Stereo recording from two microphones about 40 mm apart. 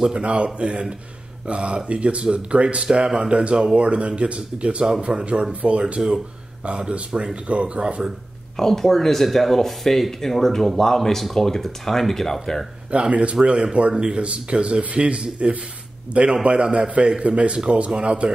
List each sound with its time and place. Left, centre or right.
0.2 s speech: right
5.8 s speech: right
8.5 s speech: centre
12.9 s speech: right